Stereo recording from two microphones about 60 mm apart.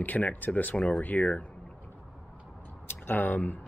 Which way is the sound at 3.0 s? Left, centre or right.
Left.